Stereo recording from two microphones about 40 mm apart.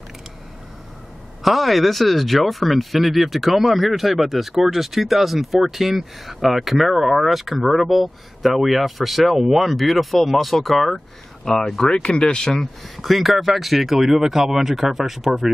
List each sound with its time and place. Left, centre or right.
1.4 s speech: centre
11.9 s speech: left
12.9 s speech: centre